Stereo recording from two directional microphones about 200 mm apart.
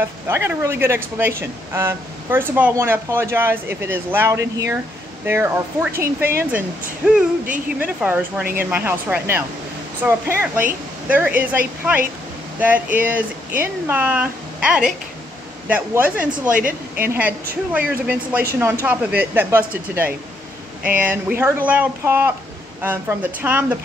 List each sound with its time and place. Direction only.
0.3 s speech: 10° right (ahead or behind)
7.0 s music: 5° right (ahead or behind)
7.8 s speech: 5° right (ahead or behind)
16.4 s a woman's voice: 40° right (ahead or behind)
17.7 s speech: 5° right (ahead or behind)